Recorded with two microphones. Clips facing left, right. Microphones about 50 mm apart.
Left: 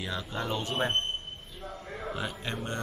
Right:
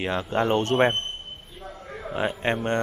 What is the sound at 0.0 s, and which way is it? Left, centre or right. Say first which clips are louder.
Speech: right 10 dB; right.